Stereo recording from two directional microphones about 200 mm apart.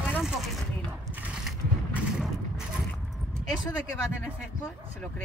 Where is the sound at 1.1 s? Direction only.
5° right (ahead or behind).